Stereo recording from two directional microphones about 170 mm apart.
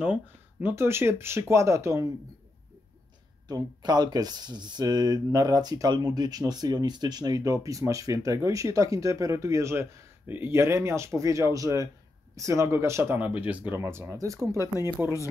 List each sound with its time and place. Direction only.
0.0 s speech: 10° right (ahead or behind)
3.4 s speech: 25° right (ahead or behind)